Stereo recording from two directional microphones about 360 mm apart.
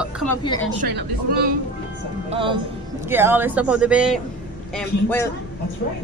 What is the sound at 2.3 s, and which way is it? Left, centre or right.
Speech, centre.